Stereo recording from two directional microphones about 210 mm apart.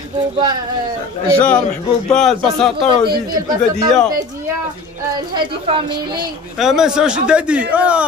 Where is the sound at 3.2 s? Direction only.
15° right (ahead or behind).